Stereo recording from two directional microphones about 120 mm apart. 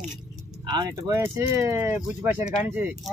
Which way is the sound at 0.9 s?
20° right (ahead or behind).